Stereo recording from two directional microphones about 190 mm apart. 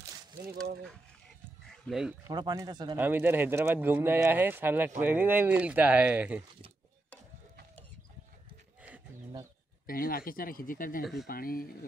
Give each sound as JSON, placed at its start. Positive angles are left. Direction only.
{"t": 1.9, "sound": "speech", "side_deg": 0}
{"t": 2.2, "sound": "speech", "side_deg": -20}
{"t": 3.0, "sound": "speech", "side_deg": -10}
{"t": 9.8, "sound": "speech", "side_deg": 50}